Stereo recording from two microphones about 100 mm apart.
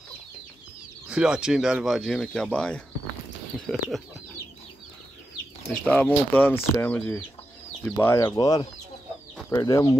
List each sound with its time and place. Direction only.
1.0 s speech: 10° right (ahead or behind); by 2.8 s 10° left (ahead or behind)
5.7 s speech: 15° left (ahead or behind)
8.2 s speech: 40° left (ahead or behind)